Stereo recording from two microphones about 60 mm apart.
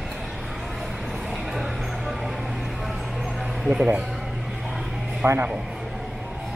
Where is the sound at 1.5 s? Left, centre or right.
Centre.